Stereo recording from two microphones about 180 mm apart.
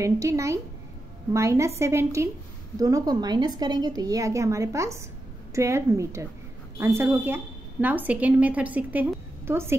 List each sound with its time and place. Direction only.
0.0 s a woman's voice: 15° right (ahead or behind)